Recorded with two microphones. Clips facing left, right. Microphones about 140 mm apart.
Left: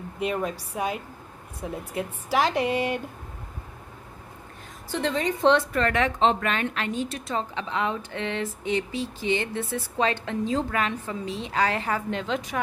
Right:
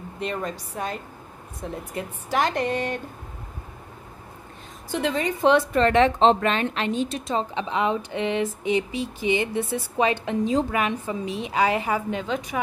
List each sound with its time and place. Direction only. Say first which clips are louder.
0.2 s a woman's voice: left 2 dB; 5° left (ahead or behind)
4.9 s a woman's voice: right 1 dB; 5° right (ahead or behind)
5.7 s a woman's voice: right 6 dB; 25° right (ahead or behind); by 12.5 s centre (ahead or behind)